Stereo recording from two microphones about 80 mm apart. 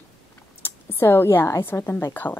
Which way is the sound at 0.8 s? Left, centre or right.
Left.